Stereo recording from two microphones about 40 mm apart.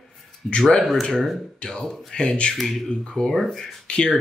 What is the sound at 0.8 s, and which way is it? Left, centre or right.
Speech, centre.